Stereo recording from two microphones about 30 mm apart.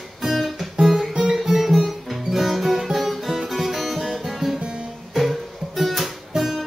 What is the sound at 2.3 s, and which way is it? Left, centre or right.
Music, centre.